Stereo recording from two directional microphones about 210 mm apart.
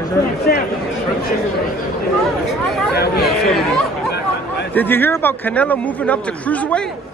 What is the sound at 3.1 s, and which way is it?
Speech, centre (ahead or behind).